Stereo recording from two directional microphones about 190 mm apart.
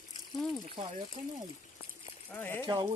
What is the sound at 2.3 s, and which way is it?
Speech, 10° left (ahead or behind).